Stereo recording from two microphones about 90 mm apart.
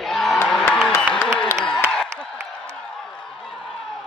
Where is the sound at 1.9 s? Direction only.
5° left (ahead or behind).